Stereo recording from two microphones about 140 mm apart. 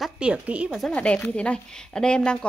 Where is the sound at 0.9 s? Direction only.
10° left (ahead or behind).